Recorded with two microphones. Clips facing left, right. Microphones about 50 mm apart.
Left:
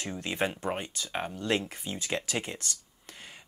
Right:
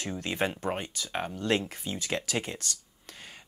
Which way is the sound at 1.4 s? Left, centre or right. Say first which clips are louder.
Right 2 dB; centre.